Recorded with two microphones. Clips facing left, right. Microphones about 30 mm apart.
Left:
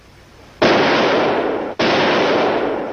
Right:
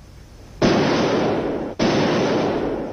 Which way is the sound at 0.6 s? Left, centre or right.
Left.